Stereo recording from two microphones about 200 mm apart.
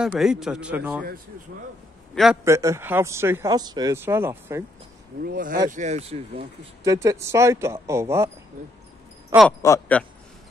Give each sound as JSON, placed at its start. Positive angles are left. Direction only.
{"t": 0.0, "sound": "a man's voice", "side_deg": -5}
{"t": 2.4, "sound": "speech", "side_deg": -15}
{"t": 5.2, "sound": "speech", "side_deg": -45}
{"t": 6.8, "sound": "speech", "side_deg": -15}
{"t": 9.6, "sound": "speech", "side_deg": 10}